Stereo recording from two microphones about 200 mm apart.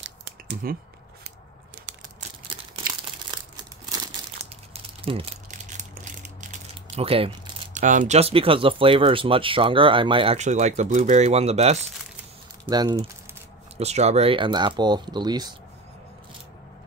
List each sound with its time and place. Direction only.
0.6 s speech: 45° right (ahead or behind)
2.8 s crumpling: 45° right (ahead or behind)
4.7 s a sound: 25° right (ahead or behind)
5.5 s a sound: 35° right (ahead or behind)
7.7 s speech: 40° right (ahead or behind)
12.6 s typing: 20° right (ahead or behind)
13.7 s speech: 30° right (ahead or behind)